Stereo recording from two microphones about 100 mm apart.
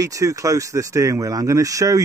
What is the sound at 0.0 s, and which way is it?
A man's voice, 35° right (ahead or behind).